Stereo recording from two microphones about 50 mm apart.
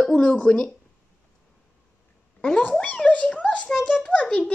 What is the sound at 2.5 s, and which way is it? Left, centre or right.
A woman's voice, left.